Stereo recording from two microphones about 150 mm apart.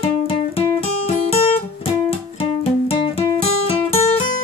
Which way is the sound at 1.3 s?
40° left (ahead or behind).